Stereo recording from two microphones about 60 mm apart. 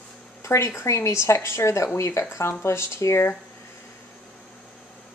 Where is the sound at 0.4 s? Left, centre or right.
Left.